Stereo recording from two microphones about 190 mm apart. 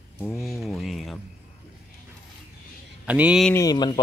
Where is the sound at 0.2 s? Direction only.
Centre (ahead or behind).